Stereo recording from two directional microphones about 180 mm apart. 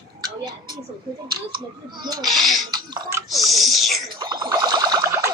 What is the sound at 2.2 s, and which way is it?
Speech, centre (ahead or behind).